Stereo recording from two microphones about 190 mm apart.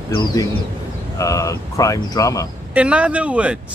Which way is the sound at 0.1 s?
20° left (ahead or behind).